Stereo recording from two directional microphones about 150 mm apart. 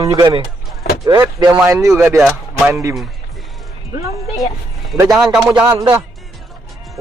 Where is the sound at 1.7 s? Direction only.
20° right (ahead or behind).